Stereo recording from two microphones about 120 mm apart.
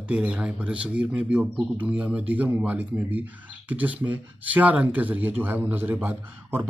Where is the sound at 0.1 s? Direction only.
10° right (ahead or behind).